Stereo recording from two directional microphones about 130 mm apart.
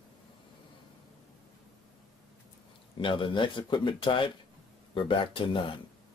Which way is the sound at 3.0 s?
40° left (ahead or behind).